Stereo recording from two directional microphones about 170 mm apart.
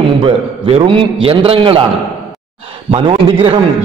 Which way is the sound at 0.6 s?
30° right (ahead or behind).